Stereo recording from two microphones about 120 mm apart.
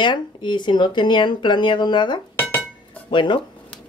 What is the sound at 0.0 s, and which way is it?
Speech, 40° left (ahead or behind).